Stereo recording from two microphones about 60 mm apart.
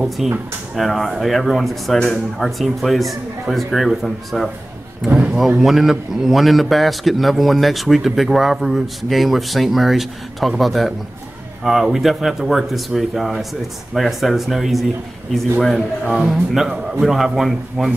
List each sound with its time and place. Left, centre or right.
0.2 s a man's voice: centre
5.0 s speech: centre
5.6 s a man's voice: centre
16.1 s a man's voice: centre